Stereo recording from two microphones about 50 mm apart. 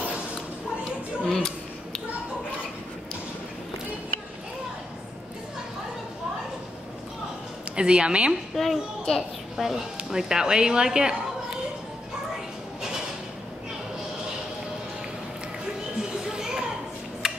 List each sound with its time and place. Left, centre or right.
1.3 s a sound: centre
7.7 s a woman's voice: centre
8.3 s a woman's voice: centre
10.1 s a woman's voice: centre
16.0 s children playing: centre
17.2 s a sound: centre